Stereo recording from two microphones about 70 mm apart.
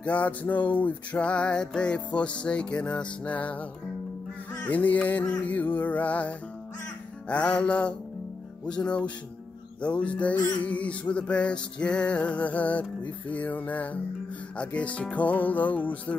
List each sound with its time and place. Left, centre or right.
0.0 s music: left
4.6 s music: left